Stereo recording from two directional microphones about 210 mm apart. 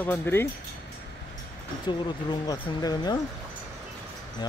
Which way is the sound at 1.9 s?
20° left (ahead or behind).